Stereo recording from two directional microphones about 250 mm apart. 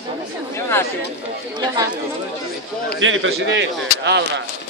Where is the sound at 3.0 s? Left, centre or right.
Right.